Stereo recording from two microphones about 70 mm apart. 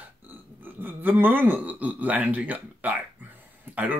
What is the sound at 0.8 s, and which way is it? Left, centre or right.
Speech, right.